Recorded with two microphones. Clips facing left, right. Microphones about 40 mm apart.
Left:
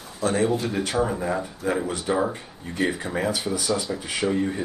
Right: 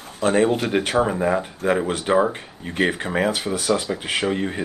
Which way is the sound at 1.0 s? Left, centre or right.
Right.